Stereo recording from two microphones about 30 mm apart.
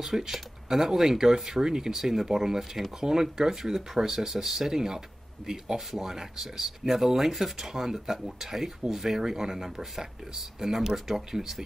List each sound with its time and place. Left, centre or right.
0.0 s speech: centre